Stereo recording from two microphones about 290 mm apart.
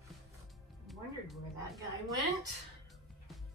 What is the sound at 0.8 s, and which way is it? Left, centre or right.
A woman's voice, centre.